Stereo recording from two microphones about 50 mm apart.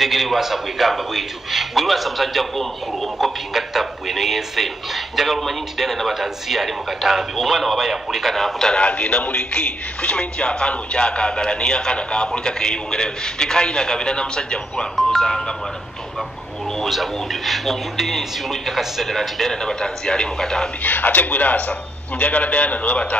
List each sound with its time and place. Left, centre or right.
0.0 s a man's voice: centre
8.7 s a man's voice: left; by 15.5 s centre
16.7 s a man's voice: centre
20.8 s a man's voice: left